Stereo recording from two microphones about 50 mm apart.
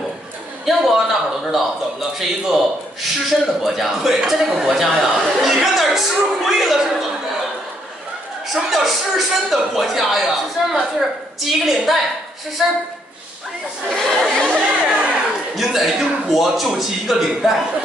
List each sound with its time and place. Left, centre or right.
0.7 s a man's voice: centre
8.5 s a man's voice: centre
13.8 s speech: centre
14.5 s chatter: right
15.5 s a man's voice: centre